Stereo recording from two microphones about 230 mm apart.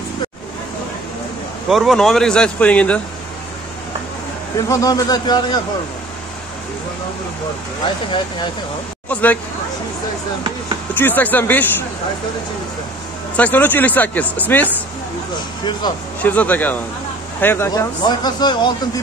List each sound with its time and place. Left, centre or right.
1.7 s speech: centre
4.6 s speech: centre
7.8 s speech: left
9.1 s speech: centre
11.0 s speech: centre
13.4 s speech: centre
16.2 s speech: centre